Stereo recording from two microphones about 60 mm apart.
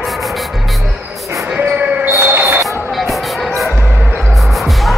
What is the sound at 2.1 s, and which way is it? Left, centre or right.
Music, right.